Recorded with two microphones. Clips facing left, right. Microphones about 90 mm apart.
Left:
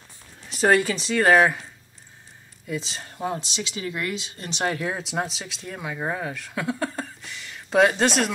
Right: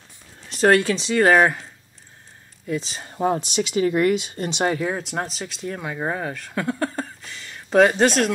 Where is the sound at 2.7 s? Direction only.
Centre (ahead or behind).